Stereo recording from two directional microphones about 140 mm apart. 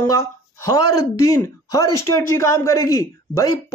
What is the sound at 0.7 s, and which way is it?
A man's voice, 25° left (ahead or behind).